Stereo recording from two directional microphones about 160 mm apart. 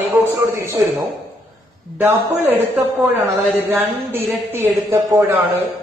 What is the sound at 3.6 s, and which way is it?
A man's voice, 10° right (ahead or behind).